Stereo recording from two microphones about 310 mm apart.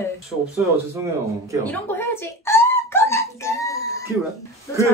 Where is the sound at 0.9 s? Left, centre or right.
Centre.